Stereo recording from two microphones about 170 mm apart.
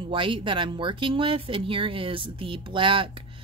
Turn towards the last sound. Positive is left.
turn(degrees=-30)  # may be behind; listen again after turning